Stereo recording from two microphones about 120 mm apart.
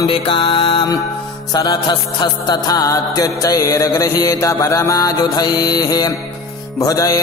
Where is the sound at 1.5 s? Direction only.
35° left (ahead or behind).